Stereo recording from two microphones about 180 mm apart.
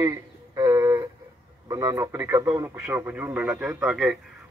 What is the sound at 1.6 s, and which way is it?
A man's voice, 20° right (ahead or behind).